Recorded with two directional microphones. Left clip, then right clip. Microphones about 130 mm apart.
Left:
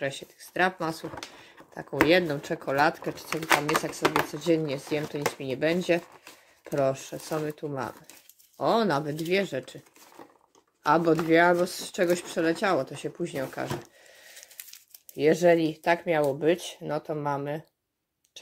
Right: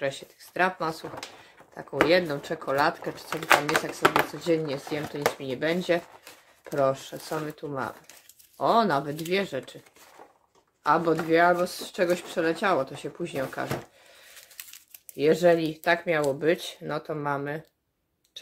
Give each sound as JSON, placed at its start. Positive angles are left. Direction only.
{"t": 0.0, "sound": "speech", "side_deg": 45}
{"t": 3.3, "sound": "speech", "side_deg": 25}
{"t": 4.0, "sound": "speech", "side_deg": 15}
{"t": 4.3, "sound": "speech", "side_deg": 45}
{"t": 10.8, "sound": "speech", "side_deg": 50}
{"t": 15.1, "sound": "speech", "side_deg": 25}